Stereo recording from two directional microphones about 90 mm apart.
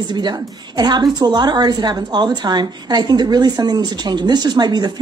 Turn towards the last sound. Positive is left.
turn(degrees=-50)  # may be behind; listen again after turning